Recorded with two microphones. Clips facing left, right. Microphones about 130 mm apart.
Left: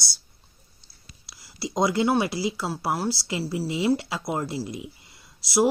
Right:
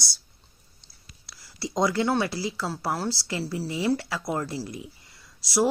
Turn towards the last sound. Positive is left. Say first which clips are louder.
# left 2 dB
turn(degrees=15)  # may be behind; listen again after turning